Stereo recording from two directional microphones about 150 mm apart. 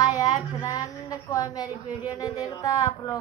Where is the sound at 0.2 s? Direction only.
20° left (ahead or behind).